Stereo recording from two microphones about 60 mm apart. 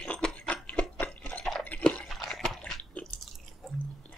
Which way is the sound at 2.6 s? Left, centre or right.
Left.